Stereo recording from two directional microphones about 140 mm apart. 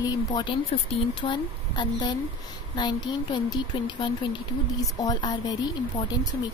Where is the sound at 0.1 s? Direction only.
30° left (ahead or behind).